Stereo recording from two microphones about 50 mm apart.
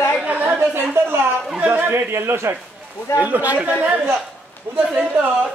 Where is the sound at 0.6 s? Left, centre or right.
Right.